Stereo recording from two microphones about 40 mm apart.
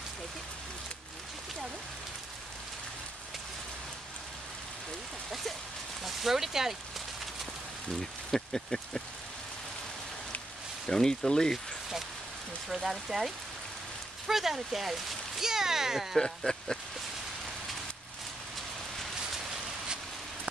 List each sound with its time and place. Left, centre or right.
6.0 s speech: centre
8.3 s speech: centre
10.9 s speech: centre
12.6 s speech: centre
16.2 s speech: centre